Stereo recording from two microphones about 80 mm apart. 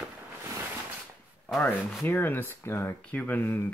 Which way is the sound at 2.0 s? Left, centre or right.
Left.